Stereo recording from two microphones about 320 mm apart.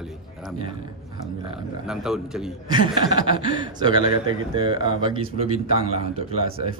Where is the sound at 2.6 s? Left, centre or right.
Centre.